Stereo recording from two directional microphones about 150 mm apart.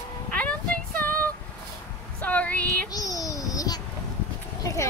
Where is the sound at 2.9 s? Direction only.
25° left (ahead or behind).